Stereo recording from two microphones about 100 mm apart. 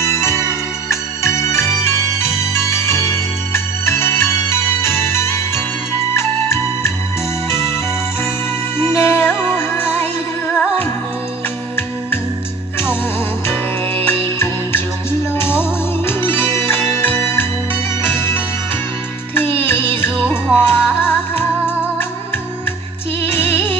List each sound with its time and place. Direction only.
0.0 s music: 30° left (ahead or behind)
8.7 s music: 25° left (ahead or behind)
14.0 s music: 25° left (ahead or behind)
16.1 s music: 25° left (ahead or behind)
19.6 s music: 20° left (ahead or behind)
23.2 s music: 25° left (ahead or behind)